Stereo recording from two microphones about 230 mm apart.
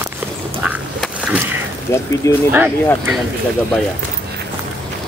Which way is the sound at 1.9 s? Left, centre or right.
Centre.